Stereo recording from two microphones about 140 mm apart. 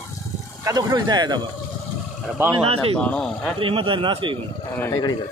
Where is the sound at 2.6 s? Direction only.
45° right (ahead or behind).